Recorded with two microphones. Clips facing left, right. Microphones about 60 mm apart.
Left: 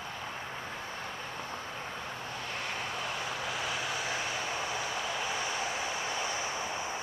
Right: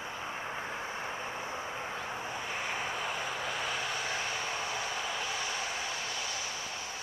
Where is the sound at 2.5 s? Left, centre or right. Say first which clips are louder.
Right 1 dB; centre.